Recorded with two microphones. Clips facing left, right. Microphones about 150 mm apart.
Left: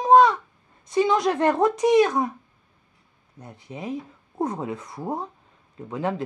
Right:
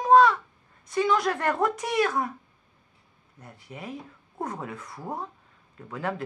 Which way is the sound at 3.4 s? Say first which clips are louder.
Left 5 dB; 20° left (ahead or behind).